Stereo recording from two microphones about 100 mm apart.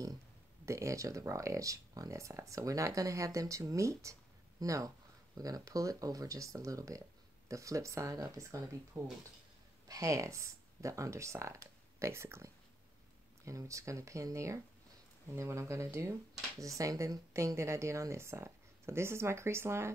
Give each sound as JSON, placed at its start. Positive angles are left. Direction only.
{"t": 0.7, "sound": "speech", "side_deg": -30}
{"t": 13.5, "sound": "speech", "side_deg": -30}